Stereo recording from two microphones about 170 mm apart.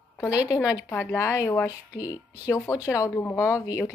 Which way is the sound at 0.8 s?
15° left (ahead or behind).